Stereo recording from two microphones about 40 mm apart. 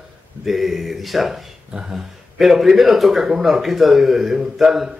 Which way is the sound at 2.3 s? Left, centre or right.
Centre.